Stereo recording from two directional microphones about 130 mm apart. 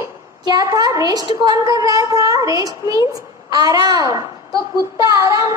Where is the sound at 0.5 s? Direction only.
30° right (ahead or behind).